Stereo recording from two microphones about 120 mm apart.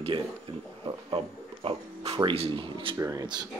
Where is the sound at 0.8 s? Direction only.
50° right (ahead or behind).